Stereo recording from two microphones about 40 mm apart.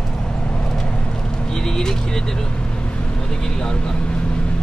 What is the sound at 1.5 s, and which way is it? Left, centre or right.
Speech, centre.